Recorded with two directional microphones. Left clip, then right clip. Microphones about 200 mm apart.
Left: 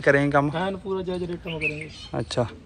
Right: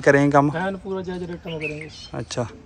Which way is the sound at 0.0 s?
20° right (ahead or behind).